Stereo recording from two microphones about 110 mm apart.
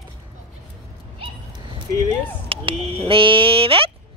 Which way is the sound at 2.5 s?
55° right (ahead or behind).